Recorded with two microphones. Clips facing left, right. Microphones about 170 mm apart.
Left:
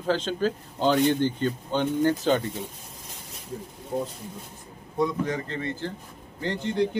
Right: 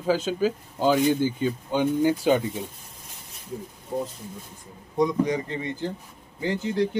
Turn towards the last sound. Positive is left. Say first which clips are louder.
# right 1 dB
turn(degrees=0)  # may be behind; listen again after turning